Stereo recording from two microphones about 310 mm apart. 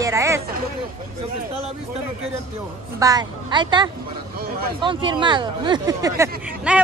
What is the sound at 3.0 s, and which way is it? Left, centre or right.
Speech, centre.